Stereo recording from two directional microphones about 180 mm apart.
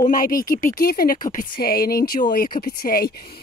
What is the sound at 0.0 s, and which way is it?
Speech, 50° left (ahead or behind).